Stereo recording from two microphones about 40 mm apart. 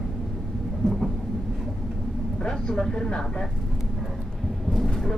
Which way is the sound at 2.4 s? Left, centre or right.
Centre.